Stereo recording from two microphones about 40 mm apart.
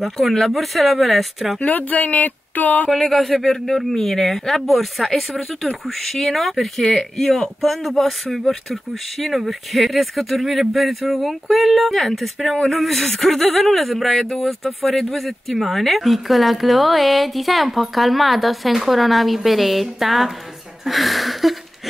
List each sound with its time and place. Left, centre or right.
0.0 s speech: centre
1.6 s speech: left
2.9 s speech: centre